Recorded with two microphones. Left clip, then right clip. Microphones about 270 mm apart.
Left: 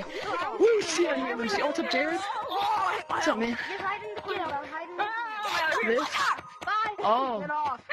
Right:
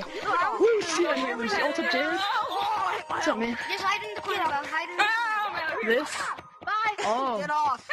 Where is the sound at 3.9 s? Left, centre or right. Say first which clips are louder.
Right 4 dB; right.